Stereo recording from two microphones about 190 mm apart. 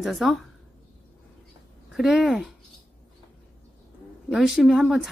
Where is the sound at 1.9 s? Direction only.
Centre (ahead or behind).